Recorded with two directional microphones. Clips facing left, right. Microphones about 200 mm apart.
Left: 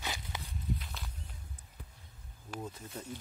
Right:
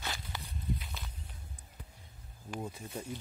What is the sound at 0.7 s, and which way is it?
Walk, centre (ahead or behind).